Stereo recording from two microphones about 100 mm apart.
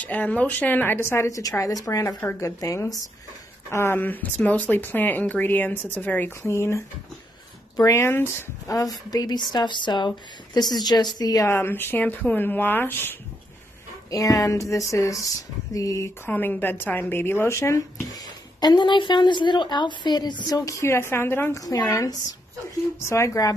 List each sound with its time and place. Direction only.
0.0 s speech: 15° left (ahead or behind)
1.0 s a woman's voice: 25° left (ahead or behind)
6.4 s speech: 30° left (ahead or behind)
7.8 s a woman's voice: 25° left (ahead or behind); by 11.4 s 40° left (ahead or behind)
11.4 s speech: 20° left (ahead or behind)
14.1 s a woman's voice: 35° left (ahead or behind)
16.3 s speech: 20° left (ahead or behind)
18.6 s a woman's voice: 50° left (ahead or behind)
21.1 s speech: 25° left (ahead or behind)
21.5 s a woman's voice: 35° left (ahead or behind)